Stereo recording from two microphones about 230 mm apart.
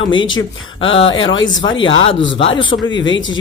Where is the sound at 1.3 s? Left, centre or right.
Left.